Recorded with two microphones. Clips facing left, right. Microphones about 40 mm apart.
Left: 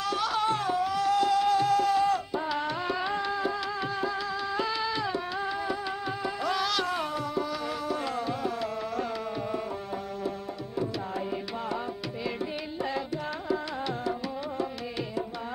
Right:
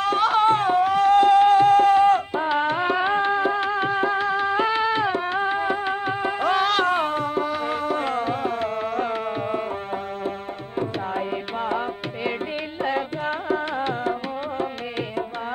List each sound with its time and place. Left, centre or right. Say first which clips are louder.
0.0 s music: right 9 dB; right
13.5 s music: right 5 dB; right